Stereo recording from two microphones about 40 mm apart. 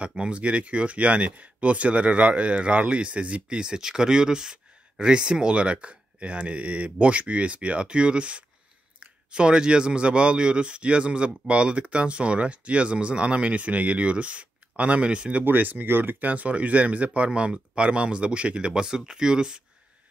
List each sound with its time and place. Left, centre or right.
0.3 s speech: right
15.4 s speech: right; by 19.6 s centre